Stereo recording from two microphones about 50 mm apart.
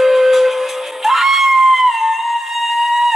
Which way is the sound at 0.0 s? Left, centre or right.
Centre.